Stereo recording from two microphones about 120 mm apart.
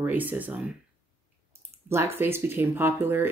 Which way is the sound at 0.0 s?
15° right (ahead or behind).